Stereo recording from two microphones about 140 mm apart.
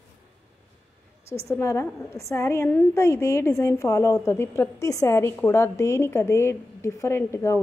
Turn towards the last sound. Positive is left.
turn(degrees=20)  # may be behind; listen again after turning